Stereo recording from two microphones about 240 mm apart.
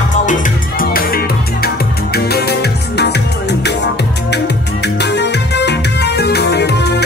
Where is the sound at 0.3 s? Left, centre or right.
Left.